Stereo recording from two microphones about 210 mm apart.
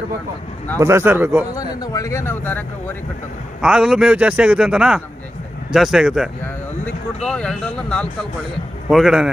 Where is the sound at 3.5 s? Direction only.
5° right (ahead or behind).